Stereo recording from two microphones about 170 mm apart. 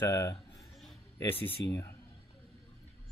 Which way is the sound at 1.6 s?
90° left.